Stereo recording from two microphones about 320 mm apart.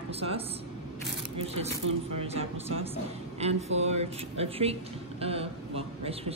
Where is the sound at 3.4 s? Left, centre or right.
Centre.